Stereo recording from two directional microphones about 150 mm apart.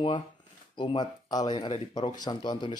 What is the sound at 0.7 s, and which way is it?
Speech, 30° left (ahead or behind).